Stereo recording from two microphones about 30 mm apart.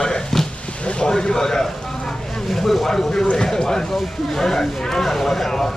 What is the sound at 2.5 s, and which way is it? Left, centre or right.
Speech, centre.